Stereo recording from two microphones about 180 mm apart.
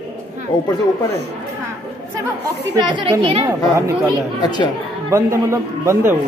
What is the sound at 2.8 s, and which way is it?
Speech, 25° right (ahead or behind).